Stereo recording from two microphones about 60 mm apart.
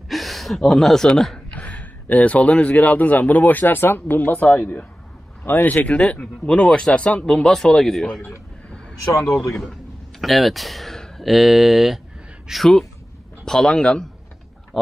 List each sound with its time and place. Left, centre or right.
0.1 s speech: centre
1.5 s speech: left
3.6 s speech: left; by 8.2 s centre
9.5 s speech: centre